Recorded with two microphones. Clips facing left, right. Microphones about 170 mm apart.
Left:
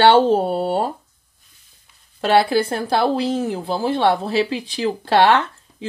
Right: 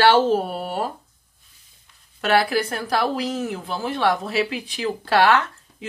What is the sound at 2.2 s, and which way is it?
A woman's voice, 30° left (ahead or behind).